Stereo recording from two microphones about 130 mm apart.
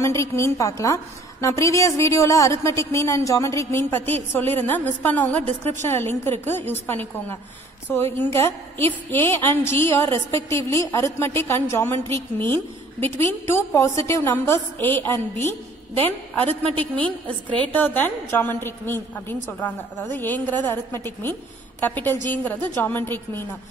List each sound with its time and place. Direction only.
0.0 s a woman's voice: 20° left (ahead or behind)